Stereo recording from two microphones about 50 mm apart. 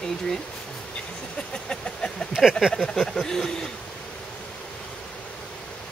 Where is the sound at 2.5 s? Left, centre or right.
Centre.